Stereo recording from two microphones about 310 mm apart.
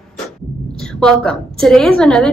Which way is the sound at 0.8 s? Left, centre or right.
Centre.